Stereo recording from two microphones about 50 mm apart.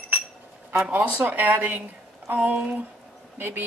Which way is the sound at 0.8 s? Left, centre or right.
Right.